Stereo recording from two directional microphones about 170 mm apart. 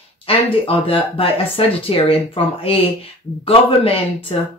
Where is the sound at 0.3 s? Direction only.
30° left (ahead or behind).